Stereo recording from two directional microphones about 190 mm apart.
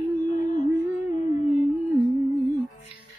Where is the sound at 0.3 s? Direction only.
40° left (ahead or behind).